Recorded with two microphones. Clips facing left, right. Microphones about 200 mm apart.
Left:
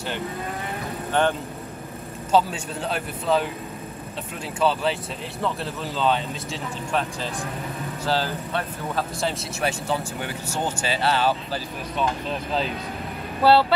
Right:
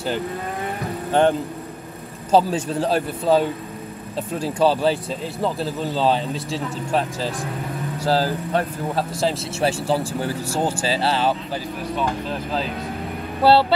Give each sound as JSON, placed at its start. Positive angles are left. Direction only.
{"t": 2.3, "sound": "speech", "side_deg": -35}
{"t": 13.4, "sound": "speech", "side_deg": -25}